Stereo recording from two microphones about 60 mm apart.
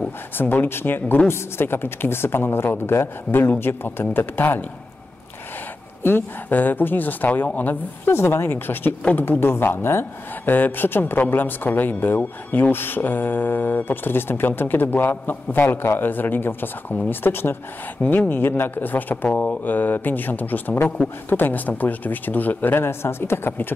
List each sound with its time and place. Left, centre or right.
0.4 s speech: left
6.0 s speech: left
18.0 s speech: centre
18.3 s speech: left